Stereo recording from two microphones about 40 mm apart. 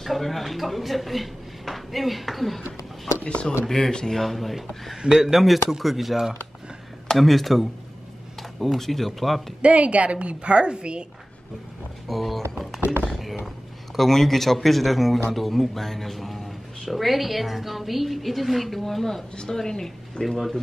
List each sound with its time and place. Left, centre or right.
0.0 s speech: centre
3.3 s speech: left
3.6 s speech: centre
5.0 s speech: centre
7.1 s speech: centre
9.6 s a woman's voice: right
12.1 s speech: centre